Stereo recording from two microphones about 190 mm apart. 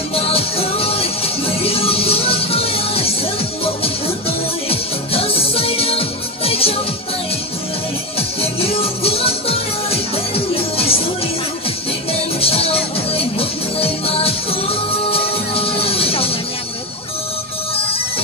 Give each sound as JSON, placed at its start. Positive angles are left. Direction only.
{"t": 0.1, "sound": "music", "side_deg": 30}
{"t": 4.6, "sound": "music", "side_deg": 30}
{"t": 8.2, "sound": "music", "side_deg": 30}
{"t": 12.1, "sound": "music", "side_deg": 30}